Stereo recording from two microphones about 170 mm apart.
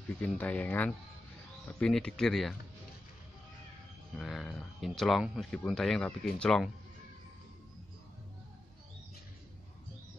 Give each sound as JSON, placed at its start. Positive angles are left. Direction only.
{"t": 0.2, "sound": "speech", "side_deg": 10}
{"t": 4.2, "sound": "speech", "side_deg": 0}